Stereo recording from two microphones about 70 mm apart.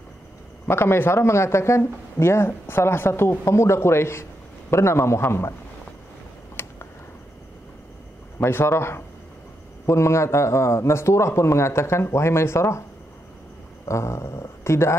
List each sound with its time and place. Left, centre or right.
0.7 s speech: left
6.6 s tick: left
8.4 s speech: left
13.8 s speech: left